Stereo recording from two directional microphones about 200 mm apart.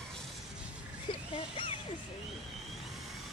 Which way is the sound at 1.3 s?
25° left (ahead or behind).